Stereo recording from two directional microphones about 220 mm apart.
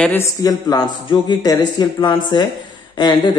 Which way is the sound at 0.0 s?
10° left (ahead or behind).